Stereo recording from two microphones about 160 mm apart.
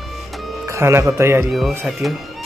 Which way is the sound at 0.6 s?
15° right (ahead or behind).